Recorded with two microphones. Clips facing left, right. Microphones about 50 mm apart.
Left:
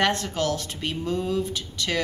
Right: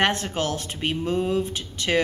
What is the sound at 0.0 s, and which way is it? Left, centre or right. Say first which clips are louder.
Speech: right 1 dB; right.